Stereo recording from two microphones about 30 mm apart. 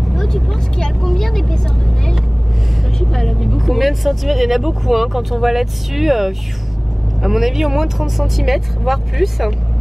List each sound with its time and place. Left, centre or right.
0.3 s speech: centre
3.0 s speech: centre
3.5 s speech: centre